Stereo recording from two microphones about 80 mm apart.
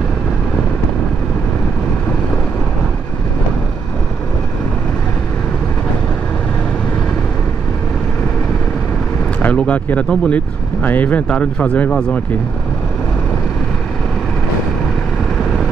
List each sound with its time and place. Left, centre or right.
9.4 s speech: centre